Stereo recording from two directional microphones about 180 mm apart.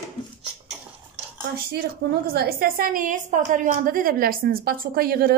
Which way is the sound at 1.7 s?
60° right (ahead or behind).